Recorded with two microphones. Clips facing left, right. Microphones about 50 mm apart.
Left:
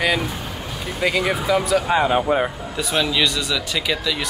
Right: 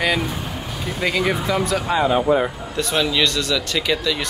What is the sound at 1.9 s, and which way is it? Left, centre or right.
Speech, left.